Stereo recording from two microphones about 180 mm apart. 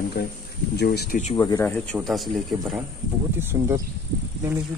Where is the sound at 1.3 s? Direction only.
20° left (ahead or behind).